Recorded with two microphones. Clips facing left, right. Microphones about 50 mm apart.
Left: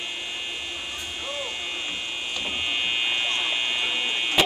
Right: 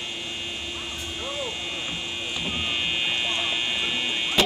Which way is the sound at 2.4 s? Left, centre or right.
Centre.